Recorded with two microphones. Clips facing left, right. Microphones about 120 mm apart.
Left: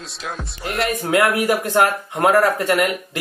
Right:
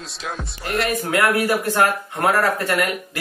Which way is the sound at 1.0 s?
15° left (ahead or behind).